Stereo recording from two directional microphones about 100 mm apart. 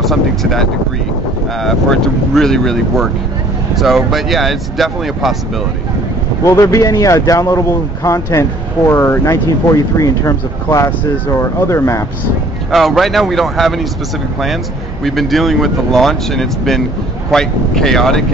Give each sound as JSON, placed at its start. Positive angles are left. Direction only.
{"t": 0.0, "sound": "speech", "side_deg": 0}
{"t": 6.4, "sound": "speech", "side_deg": 30}
{"t": 12.7, "sound": "speech", "side_deg": 0}
{"t": 15.0, "sound": "speech", "side_deg": 0}